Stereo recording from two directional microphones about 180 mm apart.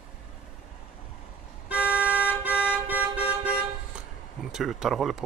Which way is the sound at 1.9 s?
10° right (ahead or behind).